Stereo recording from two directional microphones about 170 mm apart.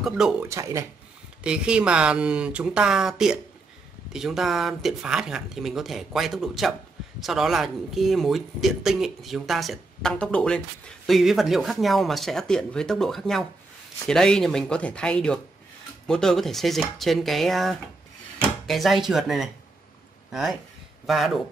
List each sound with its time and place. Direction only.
0.0 s speech: centre (ahead or behind)
0.4 s speech: 15° right (ahead or behind)
1.4 s speech: 5° right (ahead or behind)